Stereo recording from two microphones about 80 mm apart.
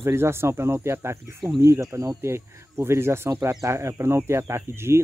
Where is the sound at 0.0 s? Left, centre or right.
Right.